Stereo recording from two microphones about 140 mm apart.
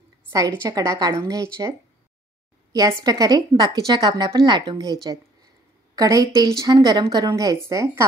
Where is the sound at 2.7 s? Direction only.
25° right (ahead or behind).